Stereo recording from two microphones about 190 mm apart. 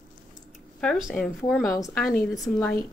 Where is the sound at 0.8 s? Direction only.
Centre (ahead or behind).